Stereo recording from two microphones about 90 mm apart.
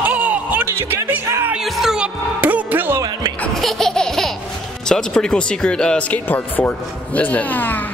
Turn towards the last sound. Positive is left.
turn(degrees=20)  # may be behind; listen again after turning